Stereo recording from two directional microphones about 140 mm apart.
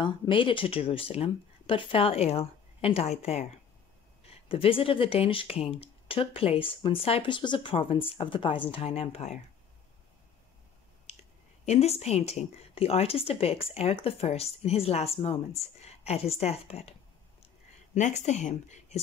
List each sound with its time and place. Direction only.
0.0 s speech: 35° left (ahead or behind)
4.5 s speech: 40° left (ahead or behind)
11.6 s speech: 50° left (ahead or behind)
17.9 s a woman's voice: 60° left (ahead or behind)